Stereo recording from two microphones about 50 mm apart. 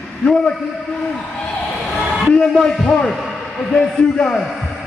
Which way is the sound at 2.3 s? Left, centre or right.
Centre.